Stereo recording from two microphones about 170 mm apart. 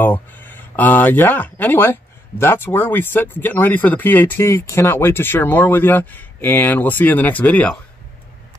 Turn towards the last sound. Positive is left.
turn(degrees=10)  # may be behind; listen again after turning